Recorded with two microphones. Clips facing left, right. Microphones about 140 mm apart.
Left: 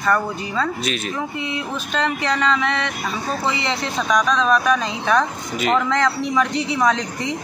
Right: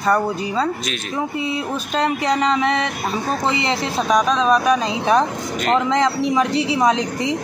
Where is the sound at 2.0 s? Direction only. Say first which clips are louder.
Right 3 dB; 35° right (ahead or behind).